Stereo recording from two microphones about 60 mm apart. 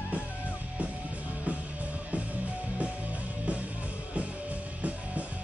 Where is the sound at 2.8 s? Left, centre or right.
Right.